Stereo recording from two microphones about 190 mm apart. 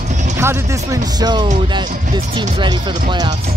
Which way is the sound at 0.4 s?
15° right (ahead or behind).